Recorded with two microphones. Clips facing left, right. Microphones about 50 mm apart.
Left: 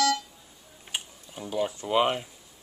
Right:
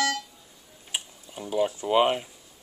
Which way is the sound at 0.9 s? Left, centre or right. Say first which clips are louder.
Right 1 dB; centre.